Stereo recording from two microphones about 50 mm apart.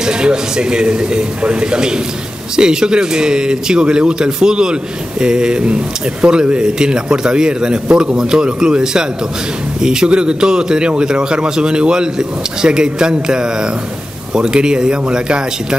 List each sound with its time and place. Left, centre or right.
0.0 s a man's voice: centre